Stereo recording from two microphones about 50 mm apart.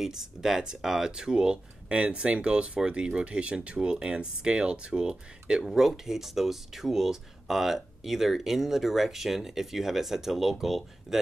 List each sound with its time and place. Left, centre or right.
0.0 s speech: centre
5.6 s speech: centre